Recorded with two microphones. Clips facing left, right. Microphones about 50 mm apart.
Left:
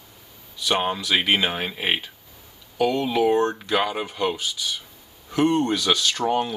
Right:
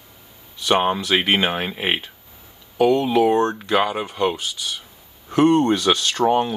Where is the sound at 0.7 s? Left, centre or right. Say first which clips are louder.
Right 4 dB; right.